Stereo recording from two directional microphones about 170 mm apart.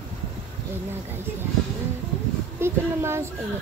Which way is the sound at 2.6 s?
15° right (ahead or behind).